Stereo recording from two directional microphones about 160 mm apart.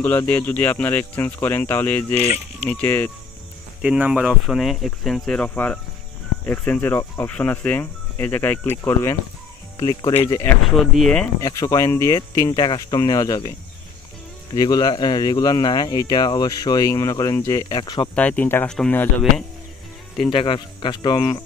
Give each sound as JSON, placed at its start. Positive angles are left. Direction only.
{"t": 0.0, "sound": "speech", "side_deg": 10}
{"t": 3.8, "sound": "speech", "side_deg": -5}
{"t": 10.6, "sound": "speech", "side_deg": 0}
{"t": 11.4, "sound": "speech", "side_deg": 20}
{"t": 18.1, "sound": "speech", "side_deg": 10}
{"t": 20.2, "sound": "speech", "side_deg": 30}